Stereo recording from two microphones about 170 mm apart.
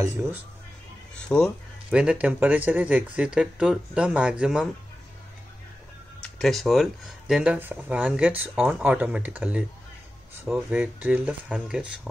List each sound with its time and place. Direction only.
0.0 s speech: 15° right (ahead or behind)
1.3 s speech: 5° left (ahead or behind)
1.9 s speech: 5° right (ahead or behind)
6.2 s speech: 5° left (ahead or behind)